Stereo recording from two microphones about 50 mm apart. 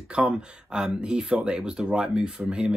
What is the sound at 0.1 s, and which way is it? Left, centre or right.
Speech, right.